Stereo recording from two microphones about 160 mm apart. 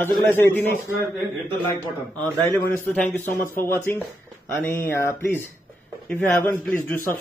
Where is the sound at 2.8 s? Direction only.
5° left (ahead or behind).